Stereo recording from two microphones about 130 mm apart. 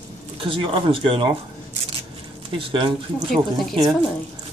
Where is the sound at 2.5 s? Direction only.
45° right (ahead or behind).